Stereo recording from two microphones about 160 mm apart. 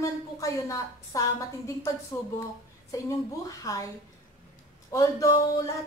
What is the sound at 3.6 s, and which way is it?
Speech, 20° left (ahead or behind).